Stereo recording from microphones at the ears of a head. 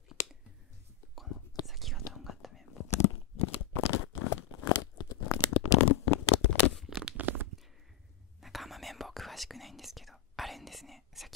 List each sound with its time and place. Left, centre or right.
2.0 s whispering: left
7.0 s tearing: right
8.4 s whispering: centre